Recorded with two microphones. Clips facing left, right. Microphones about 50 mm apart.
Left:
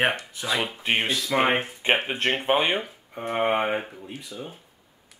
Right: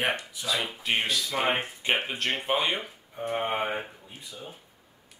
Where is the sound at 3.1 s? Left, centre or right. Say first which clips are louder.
Left 5 dB; left.